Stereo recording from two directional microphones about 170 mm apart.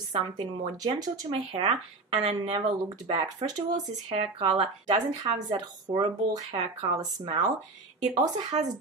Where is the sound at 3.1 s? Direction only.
30° right (ahead or behind).